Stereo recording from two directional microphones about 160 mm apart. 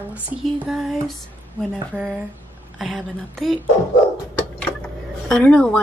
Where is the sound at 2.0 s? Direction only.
10° right (ahead or behind).